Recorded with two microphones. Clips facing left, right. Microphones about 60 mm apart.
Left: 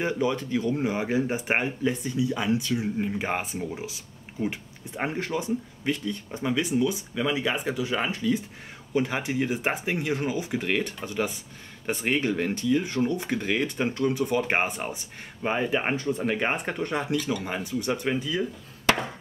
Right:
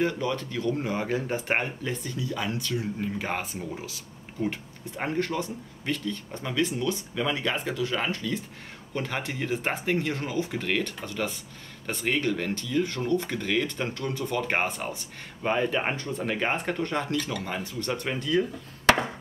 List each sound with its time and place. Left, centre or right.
0.0 s speech: centre